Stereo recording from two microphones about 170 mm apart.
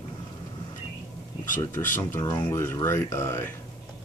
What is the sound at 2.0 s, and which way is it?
Speech, 15° left (ahead or behind).